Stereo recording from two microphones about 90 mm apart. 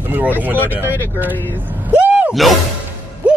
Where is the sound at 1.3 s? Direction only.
20° left (ahead or behind).